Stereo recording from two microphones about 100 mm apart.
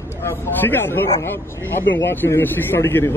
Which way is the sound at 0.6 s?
20° left (ahead or behind).